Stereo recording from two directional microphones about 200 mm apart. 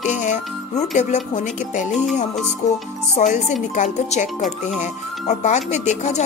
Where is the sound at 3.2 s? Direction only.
35° left (ahead or behind).